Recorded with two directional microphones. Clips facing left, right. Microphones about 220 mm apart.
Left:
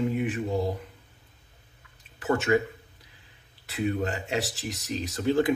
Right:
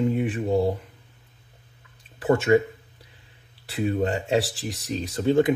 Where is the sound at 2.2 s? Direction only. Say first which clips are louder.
Right 5 dB; 30° right (ahead or behind).